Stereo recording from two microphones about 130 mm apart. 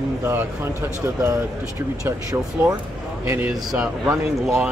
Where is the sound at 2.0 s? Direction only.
25° right (ahead or behind).